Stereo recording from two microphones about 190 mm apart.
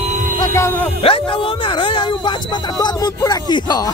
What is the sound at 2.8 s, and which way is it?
Speech, 20° left (ahead or behind).